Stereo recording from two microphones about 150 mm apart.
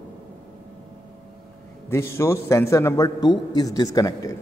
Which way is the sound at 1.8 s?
15° left (ahead or behind).